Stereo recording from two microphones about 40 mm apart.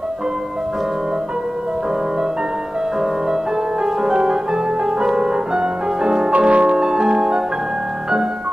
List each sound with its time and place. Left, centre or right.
3.8 s music: centre
6.3 s music: right
6.8 s music: centre